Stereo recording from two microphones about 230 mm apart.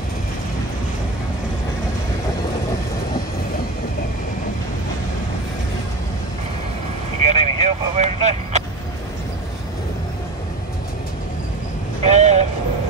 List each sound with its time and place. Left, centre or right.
7.2 s sheep: right
12.0 s vehicle: right